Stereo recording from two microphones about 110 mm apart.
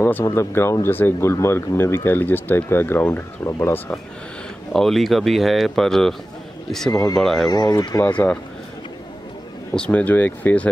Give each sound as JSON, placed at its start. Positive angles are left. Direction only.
{"t": 0.0, "sound": "speech", "side_deg": 25}
{"t": 4.7, "sound": "speech", "side_deg": 0}
{"t": 6.9, "sound": "speech", "side_deg": 35}
{"t": 7.2, "sound": "speech", "side_deg": 5}
{"t": 7.4, "sound": "speech", "side_deg": 35}
{"t": 8.0, "sound": "speech", "side_deg": 15}
{"t": 9.8, "sound": "speech", "side_deg": 10}